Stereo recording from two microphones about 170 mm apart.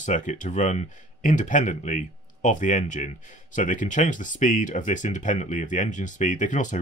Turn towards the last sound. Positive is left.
turn(degrees=45)  # may be behind; listen again after turning